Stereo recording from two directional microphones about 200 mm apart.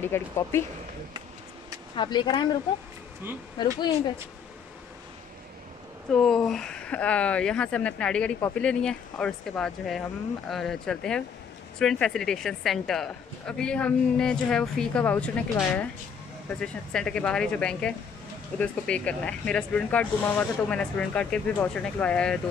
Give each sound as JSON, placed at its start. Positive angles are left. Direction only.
{"t": 0.1, "sound": "speech", "side_deg": 10}
{"t": 2.0, "sound": "speech", "side_deg": 25}
{"t": 6.1, "sound": "speech", "side_deg": 0}